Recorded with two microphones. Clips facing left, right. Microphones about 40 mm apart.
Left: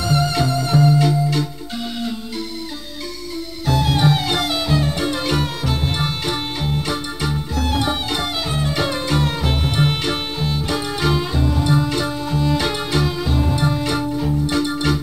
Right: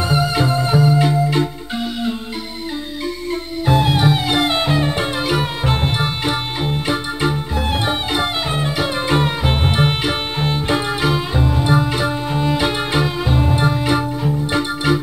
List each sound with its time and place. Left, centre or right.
0.0 s music: centre
3.6 s music: right
4.5 s music: right
11.0 s music: centre